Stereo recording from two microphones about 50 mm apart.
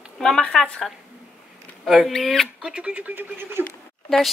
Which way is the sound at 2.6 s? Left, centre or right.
Right.